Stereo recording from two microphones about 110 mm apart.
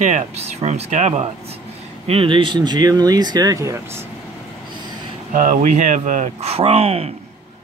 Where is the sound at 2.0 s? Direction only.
55° right (ahead or behind); by 3.8 s 30° right (ahead or behind).